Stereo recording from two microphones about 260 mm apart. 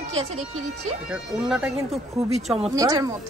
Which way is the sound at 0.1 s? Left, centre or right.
Right.